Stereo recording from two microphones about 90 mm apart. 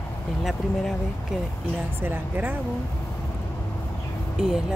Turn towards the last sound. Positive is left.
turn(degrees=-5)  # may be behind; listen again after turning